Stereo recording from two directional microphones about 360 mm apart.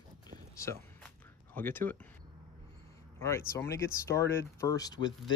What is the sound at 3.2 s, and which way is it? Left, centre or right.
Speech, centre.